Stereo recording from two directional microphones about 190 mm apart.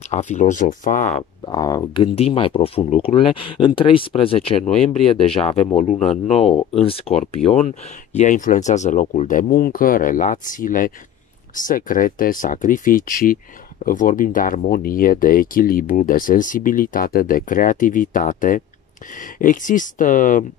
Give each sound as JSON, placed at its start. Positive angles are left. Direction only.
{"t": 0.1, "sound": "speech", "side_deg": 40}
{"t": 1.4, "sound": "speech", "side_deg": 20}
{"t": 2.1, "sound": "speech", "side_deg": 30}